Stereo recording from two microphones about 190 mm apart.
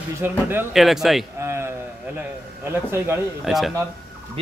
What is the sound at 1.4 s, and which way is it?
Speech, 15° right (ahead or behind).